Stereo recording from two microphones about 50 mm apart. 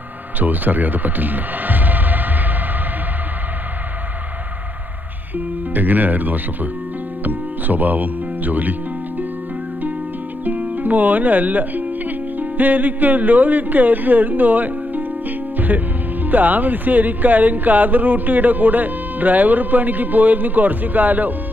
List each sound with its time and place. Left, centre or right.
0.4 s speech: right
5.7 s speech: right
7.2 s music: right
10.4 s speech: right